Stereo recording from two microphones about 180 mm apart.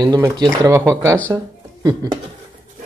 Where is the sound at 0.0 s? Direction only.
20° right (ahead or behind).